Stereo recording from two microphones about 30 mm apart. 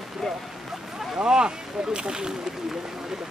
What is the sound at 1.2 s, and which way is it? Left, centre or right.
Speech, right.